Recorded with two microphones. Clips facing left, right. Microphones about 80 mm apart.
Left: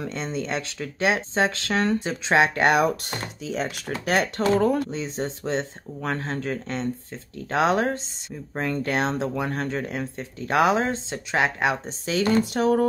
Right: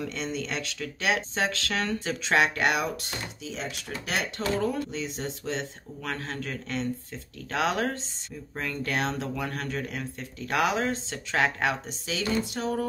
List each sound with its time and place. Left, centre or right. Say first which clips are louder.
0.0 s speech: left 3 dB; left
2.0 s speech: left 1 dB; left
2.8 s speech: left 8 dB; left
4.9 s speech: left 4 dB; left
12.1 s speech: left 7 dB; left